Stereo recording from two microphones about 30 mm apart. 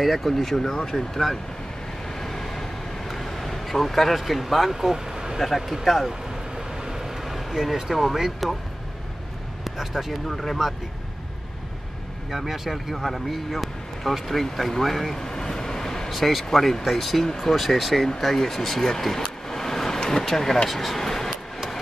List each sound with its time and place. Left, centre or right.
0.0 s speech: centre
2.1 s vehicle: centre
4.7 s speech: centre
5.4 s speech: centre
6.5 s vehicle: centre
7.9 s speech: centre
9.7 s speech: centre
10.2 s speech: centre
12.3 s speech: centre
15.1 s vehicle: centre
16.1 s speech: centre
18.0 s speech: centre
19.5 s vehicle: centre
20.2 s speech: centre